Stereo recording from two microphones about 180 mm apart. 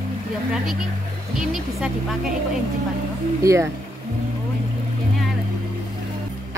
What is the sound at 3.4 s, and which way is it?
Speech, 15° right (ahead or behind).